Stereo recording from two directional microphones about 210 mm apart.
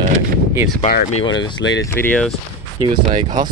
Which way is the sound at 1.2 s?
60° left (ahead or behind).